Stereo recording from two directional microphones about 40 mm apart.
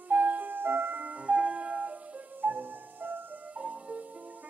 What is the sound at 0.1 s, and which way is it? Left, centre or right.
Music, right.